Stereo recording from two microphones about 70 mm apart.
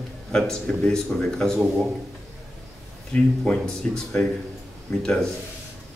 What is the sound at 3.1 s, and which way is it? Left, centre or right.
A man's voice, centre.